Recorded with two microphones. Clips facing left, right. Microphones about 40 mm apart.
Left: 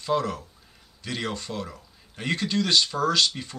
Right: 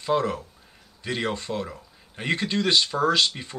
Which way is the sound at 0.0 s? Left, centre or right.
Centre.